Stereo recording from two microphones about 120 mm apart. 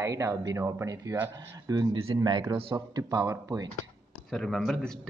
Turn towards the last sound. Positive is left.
turn(degrees=5)  # may be behind; listen again after turning